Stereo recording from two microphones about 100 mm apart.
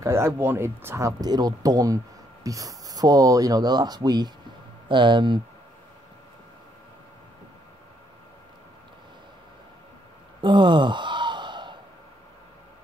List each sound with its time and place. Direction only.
0.0 s speech: 25° right (ahead or behind)
1.2 s speech: 40° right (ahead or behind)
4.8 s speech: 55° right (ahead or behind)
10.4 s sigh: 50° right (ahead or behind)